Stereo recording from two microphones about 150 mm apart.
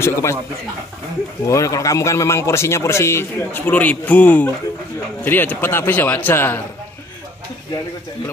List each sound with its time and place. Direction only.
0.0 s a man's voice: 15° left (ahead or behind)
1.5 s a man's voice: 20° left (ahead or behind)